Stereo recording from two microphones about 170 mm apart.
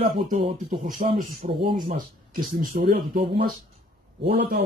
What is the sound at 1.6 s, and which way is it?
Speech, 30° right (ahead or behind).